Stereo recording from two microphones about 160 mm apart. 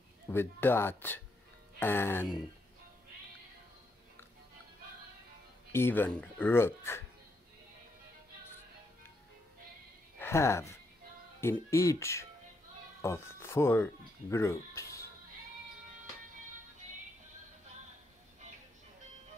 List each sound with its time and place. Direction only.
0.3 s speech: 15° left (ahead or behind)
5.7 s speech: 15° left (ahead or behind)
10.1 s speech: 15° left (ahead or behind)